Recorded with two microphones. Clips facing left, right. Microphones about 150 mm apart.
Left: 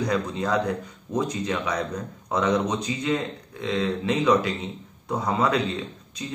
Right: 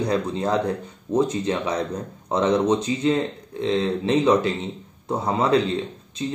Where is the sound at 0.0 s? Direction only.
30° right (ahead or behind).